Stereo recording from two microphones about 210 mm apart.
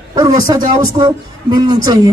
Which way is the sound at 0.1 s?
15° right (ahead or behind).